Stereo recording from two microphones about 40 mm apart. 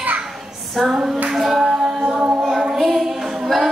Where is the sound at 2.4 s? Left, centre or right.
Centre.